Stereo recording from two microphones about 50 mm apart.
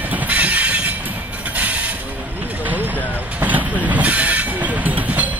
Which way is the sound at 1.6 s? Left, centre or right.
Right.